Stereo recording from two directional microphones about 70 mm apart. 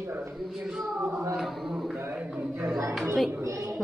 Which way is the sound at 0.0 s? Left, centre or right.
Right.